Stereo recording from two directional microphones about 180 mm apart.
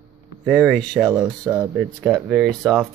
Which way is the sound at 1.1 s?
15° right (ahead or behind).